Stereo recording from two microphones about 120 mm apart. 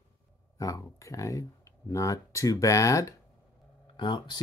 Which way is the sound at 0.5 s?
25° left (ahead or behind).